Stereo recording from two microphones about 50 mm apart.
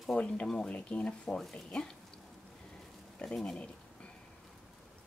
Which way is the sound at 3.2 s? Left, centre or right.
Left.